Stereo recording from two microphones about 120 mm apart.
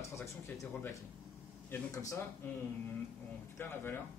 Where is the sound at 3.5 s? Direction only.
20° left (ahead or behind).